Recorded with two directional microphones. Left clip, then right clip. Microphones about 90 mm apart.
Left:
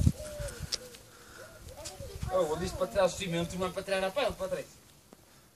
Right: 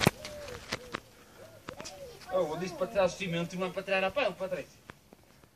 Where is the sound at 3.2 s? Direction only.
15° left (ahead or behind).